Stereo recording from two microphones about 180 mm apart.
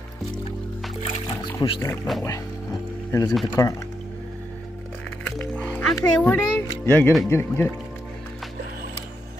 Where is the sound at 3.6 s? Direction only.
15° left (ahead or behind).